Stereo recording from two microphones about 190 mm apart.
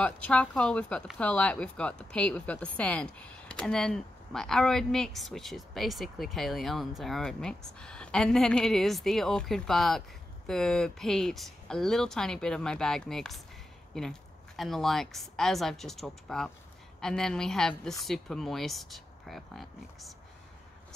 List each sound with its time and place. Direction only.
0.0 s speech: 5° left (ahead or behind)